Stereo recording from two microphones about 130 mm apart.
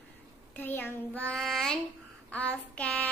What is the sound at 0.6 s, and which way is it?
Child singing, 15° left (ahead or behind).